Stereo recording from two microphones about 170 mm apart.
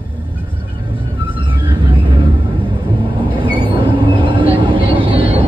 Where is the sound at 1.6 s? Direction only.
30° right (ahead or behind).